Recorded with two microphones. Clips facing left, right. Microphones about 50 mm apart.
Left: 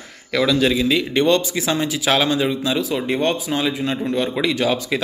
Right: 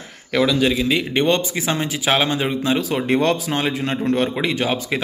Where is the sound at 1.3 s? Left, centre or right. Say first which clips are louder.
Left 1 dB; right.